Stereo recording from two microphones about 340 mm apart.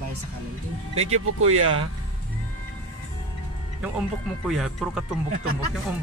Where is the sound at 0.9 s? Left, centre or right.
Right.